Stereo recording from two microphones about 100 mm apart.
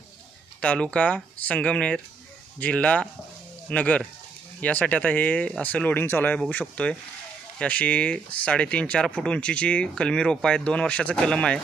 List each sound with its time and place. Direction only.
0.6 s speech: 10° left (ahead or behind)